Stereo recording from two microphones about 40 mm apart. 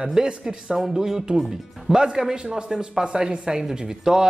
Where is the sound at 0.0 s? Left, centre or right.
Centre.